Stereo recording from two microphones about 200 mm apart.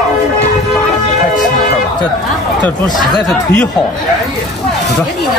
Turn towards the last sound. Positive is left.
turn(degrees=5)  # may be behind; listen again after turning